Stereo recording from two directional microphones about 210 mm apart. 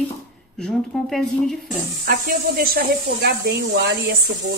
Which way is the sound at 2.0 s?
45° right (ahead or behind).